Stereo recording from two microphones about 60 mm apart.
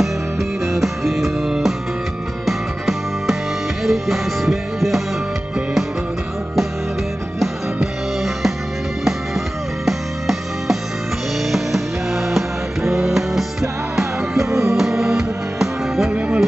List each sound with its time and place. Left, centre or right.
0.7 s music: centre
8.2 s music: centre
9.8 s music: centre
16.1 s music: right